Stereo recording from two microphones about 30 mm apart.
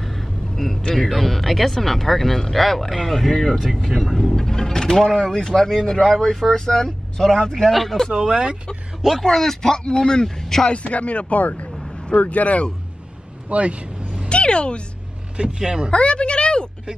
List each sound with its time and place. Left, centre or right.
0.0 s vehicle: centre
1.0 s speech: centre
7.7 s speech: centre
8.3 s speech: right
9.2 s speech: centre
10.2 s speech: centre
10.7 s speech: left
13.5 s vehicle: right
14.3 s speech: left
15.6 s speech: right
15.9 s speech: left